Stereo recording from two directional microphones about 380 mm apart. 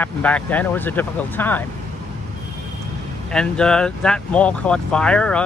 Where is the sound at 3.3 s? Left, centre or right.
Centre.